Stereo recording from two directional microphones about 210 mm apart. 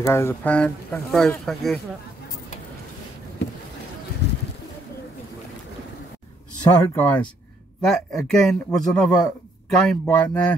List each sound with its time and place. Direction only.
0.0 s speech: 10° left (ahead or behind)
4.2 s bird: 50° left (ahead or behind)
6.8 s speech: 10° left (ahead or behind)